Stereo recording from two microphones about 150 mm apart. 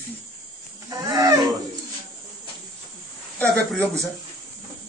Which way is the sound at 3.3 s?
5° left (ahead or behind).